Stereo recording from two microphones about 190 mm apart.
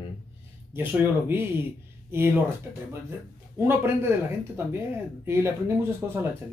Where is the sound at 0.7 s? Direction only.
10° right (ahead or behind).